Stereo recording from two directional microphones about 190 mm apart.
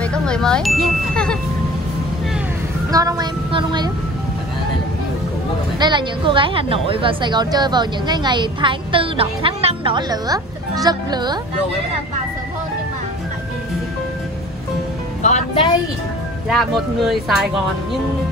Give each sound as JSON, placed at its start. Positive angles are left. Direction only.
{"t": 0.0, "sound": "speech", "side_deg": 5}
{"t": 2.9, "sound": "child singing", "side_deg": -20}
{"t": 5.8, "sound": "a woman's voice", "side_deg": -25}
{"t": 15.2, "sound": "music", "side_deg": 40}
{"t": 16.4, "sound": "speech", "side_deg": 0}